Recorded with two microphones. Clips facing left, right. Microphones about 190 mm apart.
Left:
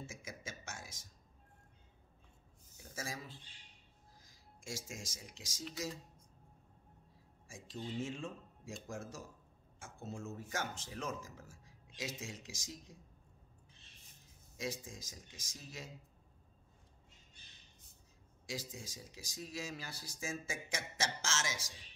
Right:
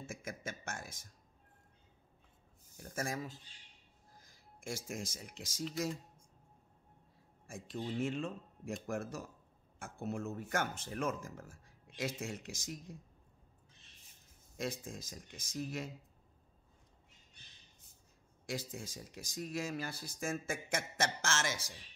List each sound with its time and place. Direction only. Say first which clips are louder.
0.0 s a sound: right 4 dB; 55° right (ahead or behind)
2.8 s speech: right 6 dB; 55° right (ahead or behind)
7.4 s speech: right 4 dB; 60° right (ahead or behind)
14.6 s speech: right 3 dB; 55° right (ahead or behind)
18.5 s speech: right 4 dB; 55° right (ahead or behind)